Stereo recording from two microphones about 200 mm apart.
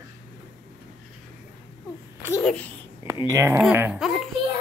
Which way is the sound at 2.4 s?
5° left (ahead or behind).